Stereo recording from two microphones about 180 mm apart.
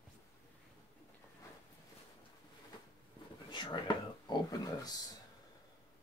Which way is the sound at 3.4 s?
25° left (ahead or behind).